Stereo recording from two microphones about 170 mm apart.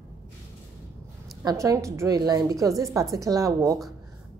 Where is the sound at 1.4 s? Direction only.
20° right (ahead or behind).